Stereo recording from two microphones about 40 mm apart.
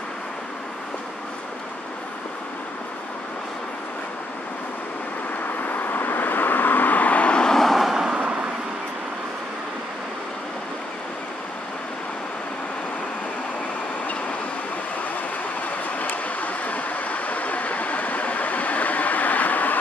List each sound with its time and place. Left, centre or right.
5.6 s vehicle: left
7.3 s vehicle: centre
7.6 s vehicle: centre
7.9 s vehicle: centre
16.3 s vehicle: left